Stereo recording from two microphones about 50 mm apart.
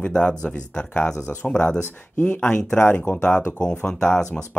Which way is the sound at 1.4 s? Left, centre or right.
Left.